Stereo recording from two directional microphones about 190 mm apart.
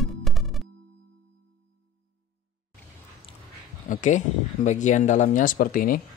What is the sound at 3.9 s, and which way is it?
Speech, 40° left (ahead or behind).